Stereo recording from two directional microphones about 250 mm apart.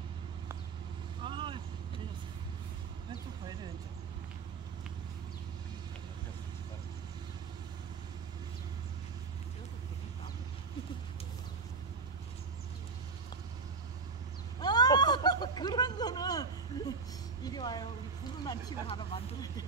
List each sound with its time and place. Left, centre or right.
1.2 s vehicle: centre
14.6 s a sound: centre
17.4 s speech: centre